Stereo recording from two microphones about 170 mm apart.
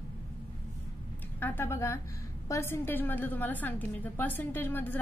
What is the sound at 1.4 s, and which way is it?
A woman's voice, 10° left (ahead or behind).